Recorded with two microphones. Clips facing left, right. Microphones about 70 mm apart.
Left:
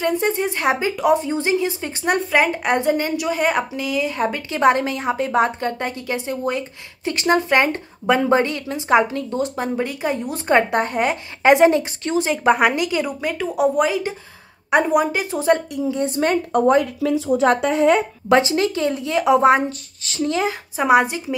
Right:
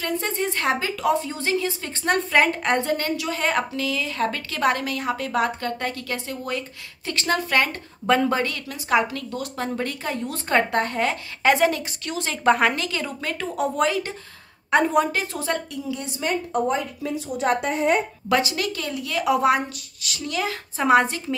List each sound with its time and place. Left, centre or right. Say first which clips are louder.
0.0 s speech: left 6 dB; centre
9.8 s a woman's voice: left 5 dB; centre
15.4 s speech: left 9 dB; left
16.0 s a woman's voice: left 8 dB; left
16.6 s speech: left 8 dB; left
18.3 s speech: left 6 dB; left
20.7 s a woman's voice: left 2 dB; centre